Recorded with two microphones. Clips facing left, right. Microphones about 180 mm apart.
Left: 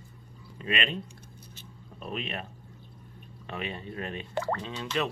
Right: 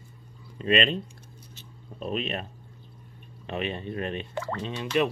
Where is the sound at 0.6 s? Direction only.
30° right (ahead or behind).